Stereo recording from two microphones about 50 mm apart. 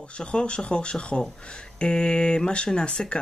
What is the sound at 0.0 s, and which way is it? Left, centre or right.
Speech, left.